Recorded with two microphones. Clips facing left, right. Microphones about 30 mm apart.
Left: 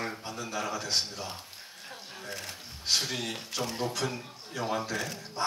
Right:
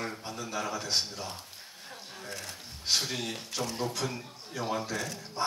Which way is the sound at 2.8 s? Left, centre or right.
Centre.